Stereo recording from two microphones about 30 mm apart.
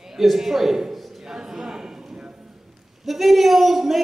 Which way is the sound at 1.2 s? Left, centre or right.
Centre.